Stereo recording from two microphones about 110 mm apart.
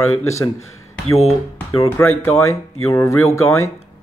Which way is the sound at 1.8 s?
20° left (ahead or behind).